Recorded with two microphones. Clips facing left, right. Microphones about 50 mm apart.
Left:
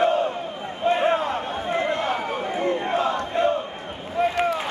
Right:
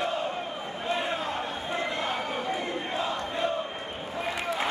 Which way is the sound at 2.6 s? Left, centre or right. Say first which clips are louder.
Left 8 dB; left.